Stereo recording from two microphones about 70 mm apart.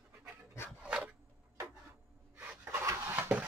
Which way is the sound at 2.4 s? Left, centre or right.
Right.